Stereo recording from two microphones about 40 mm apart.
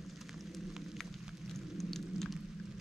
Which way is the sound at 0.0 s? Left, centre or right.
Centre.